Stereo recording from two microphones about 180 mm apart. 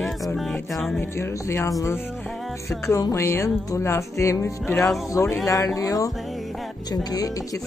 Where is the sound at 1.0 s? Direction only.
15° left (ahead or behind).